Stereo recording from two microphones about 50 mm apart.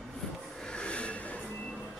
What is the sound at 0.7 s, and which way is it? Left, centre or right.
Train, left.